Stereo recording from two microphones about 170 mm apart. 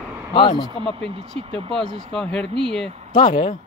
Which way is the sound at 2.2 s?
5° left (ahead or behind).